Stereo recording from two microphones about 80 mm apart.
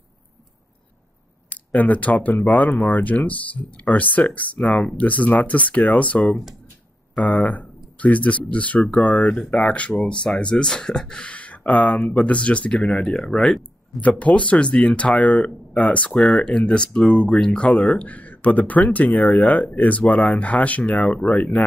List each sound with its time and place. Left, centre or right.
1.5 s speech: centre
14.0 s speech: centre